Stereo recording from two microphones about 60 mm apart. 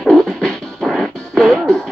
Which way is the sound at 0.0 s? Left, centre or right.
Centre.